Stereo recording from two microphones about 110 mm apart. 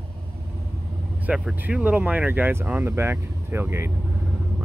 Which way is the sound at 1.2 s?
10° right (ahead or behind).